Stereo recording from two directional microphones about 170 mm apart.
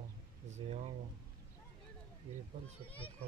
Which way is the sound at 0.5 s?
40° right (ahead or behind).